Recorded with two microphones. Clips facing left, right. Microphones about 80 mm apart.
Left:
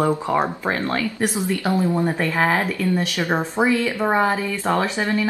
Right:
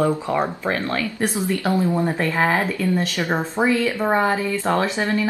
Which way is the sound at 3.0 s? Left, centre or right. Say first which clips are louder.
Even; centre.